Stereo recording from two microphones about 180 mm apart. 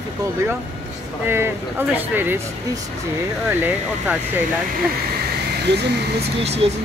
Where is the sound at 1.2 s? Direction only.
10° right (ahead or behind).